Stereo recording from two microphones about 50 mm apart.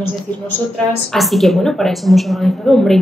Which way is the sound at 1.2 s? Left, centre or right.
Centre.